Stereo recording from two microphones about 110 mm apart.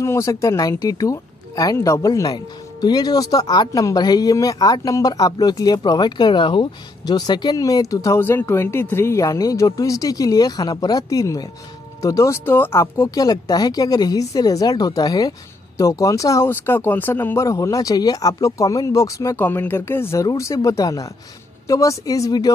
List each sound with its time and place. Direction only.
0.0 s speech: 25° left (ahead or behind)
8.2 s speech: 20° left (ahead or behind)
19.3 s speech: 15° left (ahead or behind); by 22.5 s 35° left (ahead or behind)